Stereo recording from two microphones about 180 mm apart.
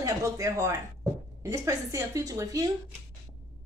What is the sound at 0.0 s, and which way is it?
A woman's voice, 20° right (ahead or behind).